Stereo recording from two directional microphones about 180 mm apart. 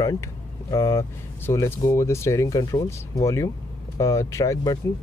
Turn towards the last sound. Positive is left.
turn(degrees=20)  # may be behind; listen again after turning